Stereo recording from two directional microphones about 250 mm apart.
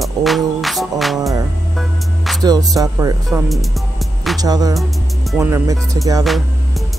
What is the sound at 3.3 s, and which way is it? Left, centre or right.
Music, centre.